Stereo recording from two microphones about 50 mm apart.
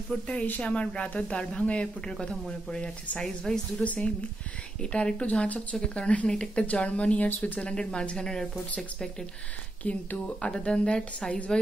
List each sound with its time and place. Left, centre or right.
0.1 s a woman's voice: left
3.8 s a woman's voice: left
7.2 s speech: left
7.6 s speech: centre
9.8 s a woman's voice: left